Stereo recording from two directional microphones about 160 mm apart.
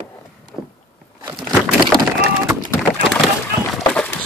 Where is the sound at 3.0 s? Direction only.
Centre (ahead or behind).